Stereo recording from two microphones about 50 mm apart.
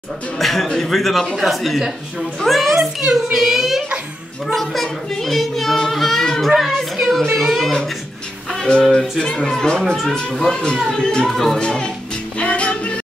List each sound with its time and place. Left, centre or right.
0.4 s a child's voice: centre
3.0 s a child's voice: centre
3.3 s a child's voice: centre
6.8 s a sound: centre
7.3 s a child's voice: centre
8.5 s speech: centre
12.4 s music: left